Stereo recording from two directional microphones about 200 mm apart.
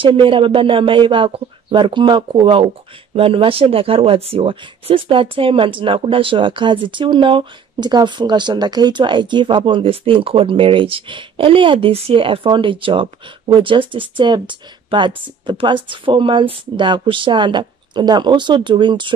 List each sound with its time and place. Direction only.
0.0 s speech: 25° right (ahead or behind)